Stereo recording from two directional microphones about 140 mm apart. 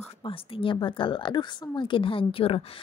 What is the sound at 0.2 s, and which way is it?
A woman's voice, 40° left (ahead or behind).